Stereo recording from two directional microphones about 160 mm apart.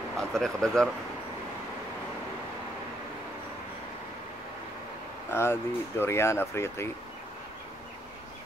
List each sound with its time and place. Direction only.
0.3 s speech: 5° left (ahead or behind)
5.3 s speech: 15° left (ahead or behind)